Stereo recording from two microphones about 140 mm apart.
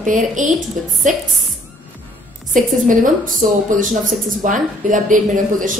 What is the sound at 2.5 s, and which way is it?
A woman's voice, 70° right (ahead or behind).